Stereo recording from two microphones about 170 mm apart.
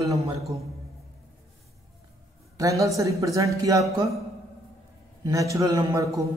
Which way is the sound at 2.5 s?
20° right (ahead or behind).